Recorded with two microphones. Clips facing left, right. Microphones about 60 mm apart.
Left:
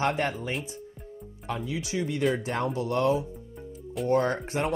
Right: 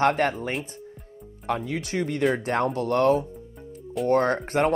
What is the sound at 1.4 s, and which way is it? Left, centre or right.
Speech, right.